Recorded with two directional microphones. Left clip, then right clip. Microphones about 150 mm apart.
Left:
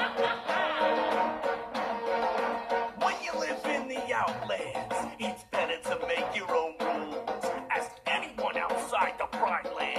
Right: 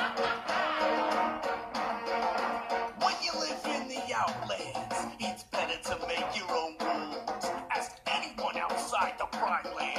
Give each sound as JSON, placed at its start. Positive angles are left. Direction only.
{"t": 0.0, "sound": "music", "side_deg": 20}